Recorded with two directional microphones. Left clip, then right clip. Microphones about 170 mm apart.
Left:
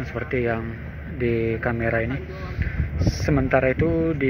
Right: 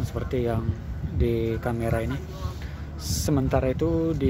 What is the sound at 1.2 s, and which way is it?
Mantra, 45° right (ahead or behind).